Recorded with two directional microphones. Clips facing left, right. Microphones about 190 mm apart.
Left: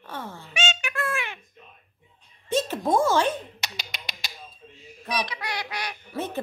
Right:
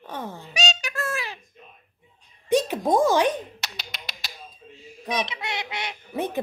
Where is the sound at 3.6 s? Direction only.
Centre (ahead or behind).